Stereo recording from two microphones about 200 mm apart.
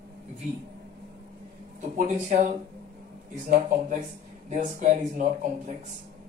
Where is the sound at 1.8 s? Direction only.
35° right (ahead or behind).